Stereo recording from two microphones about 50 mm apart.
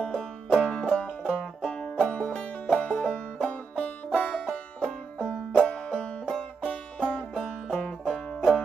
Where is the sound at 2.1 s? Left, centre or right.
Left.